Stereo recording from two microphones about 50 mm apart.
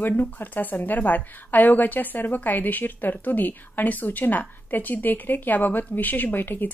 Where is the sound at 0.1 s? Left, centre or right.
Left.